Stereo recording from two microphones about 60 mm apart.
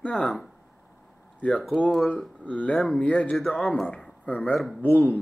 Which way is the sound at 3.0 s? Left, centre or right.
Left.